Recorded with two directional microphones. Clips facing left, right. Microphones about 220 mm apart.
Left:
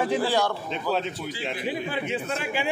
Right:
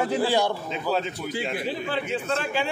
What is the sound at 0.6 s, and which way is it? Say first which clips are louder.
Speech: right 1 dB; centre (ahead or behind).